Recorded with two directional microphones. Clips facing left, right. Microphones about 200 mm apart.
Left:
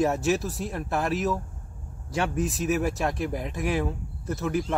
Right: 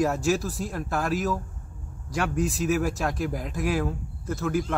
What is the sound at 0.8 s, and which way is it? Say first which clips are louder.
Speech: left 1 dB; 20° left (ahead or behind).